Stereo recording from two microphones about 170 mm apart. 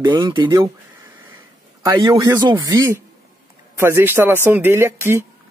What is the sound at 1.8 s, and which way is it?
Speech, 20° right (ahead or behind).